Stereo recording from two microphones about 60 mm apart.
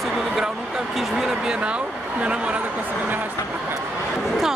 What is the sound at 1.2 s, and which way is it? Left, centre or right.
Speech, centre.